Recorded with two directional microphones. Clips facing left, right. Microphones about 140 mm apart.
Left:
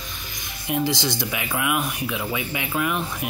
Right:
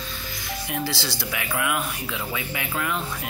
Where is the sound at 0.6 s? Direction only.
20° left (ahead or behind).